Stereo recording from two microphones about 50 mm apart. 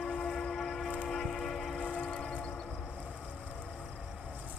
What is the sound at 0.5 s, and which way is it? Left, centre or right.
Train, centre.